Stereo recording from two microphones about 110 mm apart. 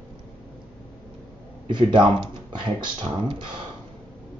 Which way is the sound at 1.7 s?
45° right (ahead or behind).